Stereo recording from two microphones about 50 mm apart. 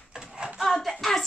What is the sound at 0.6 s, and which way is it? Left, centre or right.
Child singing, centre.